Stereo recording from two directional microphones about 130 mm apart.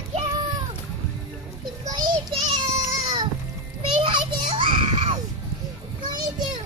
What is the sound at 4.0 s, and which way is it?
Children playing, 40° right (ahead or behind).